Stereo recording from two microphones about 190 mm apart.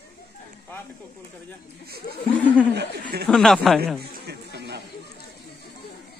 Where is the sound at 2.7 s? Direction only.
60° right (ahead or behind).